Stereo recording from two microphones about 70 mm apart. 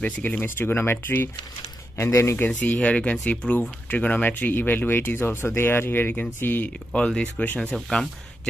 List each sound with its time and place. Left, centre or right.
0.0 s speech: left
2.3 s speech: left
6.9 s speech: centre
7.7 s speech: centre